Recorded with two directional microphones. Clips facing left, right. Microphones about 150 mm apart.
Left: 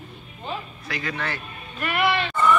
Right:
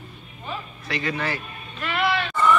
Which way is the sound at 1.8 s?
10° left (ahead or behind).